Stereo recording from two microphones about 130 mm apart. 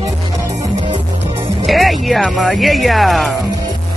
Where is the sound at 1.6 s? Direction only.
Centre (ahead or behind).